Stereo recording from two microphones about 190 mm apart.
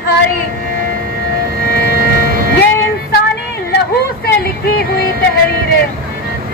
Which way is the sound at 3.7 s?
60° left (ahead or behind).